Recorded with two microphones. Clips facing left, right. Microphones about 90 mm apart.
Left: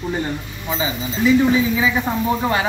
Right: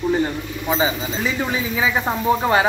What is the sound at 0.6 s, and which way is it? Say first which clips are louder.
Speech: right 3 dB; 35° right (ahead or behind).